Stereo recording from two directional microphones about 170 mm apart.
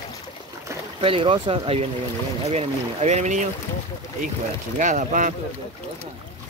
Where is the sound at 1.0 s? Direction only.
35° right (ahead or behind).